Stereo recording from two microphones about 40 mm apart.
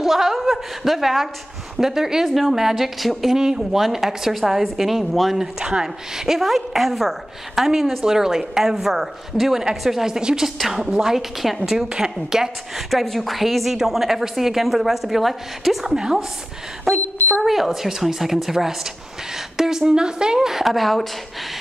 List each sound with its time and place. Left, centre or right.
0.0 s a sound: centre
1.8 s a woman's voice: centre
5.4 s a woman's voice: centre
6.2 s a woman's voice: centre
12.9 s speech: centre
15.8 s a woman's voice: centre
17.5 s a woman's voice: centre
20.3 s speech: centre